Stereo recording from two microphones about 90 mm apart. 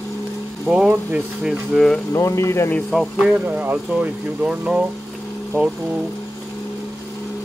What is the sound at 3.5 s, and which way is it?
Speech, 20° right (ahead or behind).